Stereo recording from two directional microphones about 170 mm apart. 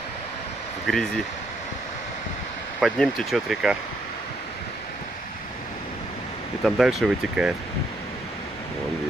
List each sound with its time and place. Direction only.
0.8 s speech: centre (ahead or behind)
2.8 s speech: centre (ahead or behind)
6.6 s speech: centre (ahead or behind)